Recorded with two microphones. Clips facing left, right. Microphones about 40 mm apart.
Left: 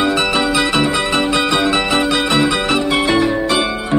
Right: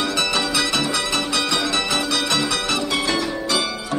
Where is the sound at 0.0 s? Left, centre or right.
Left.